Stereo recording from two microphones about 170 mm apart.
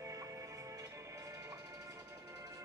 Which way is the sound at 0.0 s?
20° right (ahead or behind).